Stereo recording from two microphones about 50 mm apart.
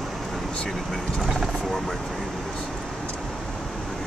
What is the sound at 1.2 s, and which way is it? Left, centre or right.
Speech, centre.